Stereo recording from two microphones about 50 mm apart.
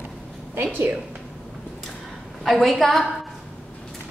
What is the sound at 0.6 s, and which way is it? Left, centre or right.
Speech, right.